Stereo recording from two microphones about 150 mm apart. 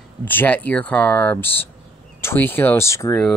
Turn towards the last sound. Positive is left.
turn(degrees=20)  # may be behind; listen again after turning